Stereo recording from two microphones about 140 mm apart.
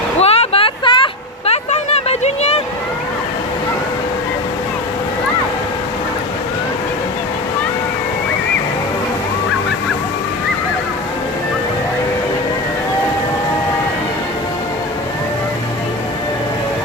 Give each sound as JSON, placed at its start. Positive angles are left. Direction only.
{"t": 0.2, "sound": "vehicle", "side_deg": 45}